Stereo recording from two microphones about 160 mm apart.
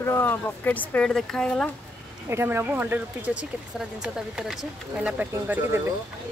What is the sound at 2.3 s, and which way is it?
Speech, 15° right (ahead or behind).